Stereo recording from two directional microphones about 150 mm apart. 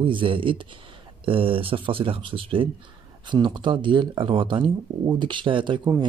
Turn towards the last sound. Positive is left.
turn(degrees=-30)  # may be behind; listen again after turning